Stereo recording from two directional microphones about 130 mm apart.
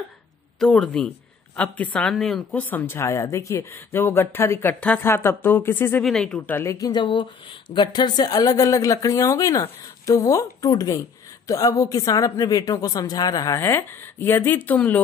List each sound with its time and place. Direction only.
0.6 s speech: 5° left (ahead or behind)
2.7 s speech: 15° left (ahead or behind)
6.0 s speech: centre (ahead or behind)
6.5 s speech: 20° left (ahead or behind)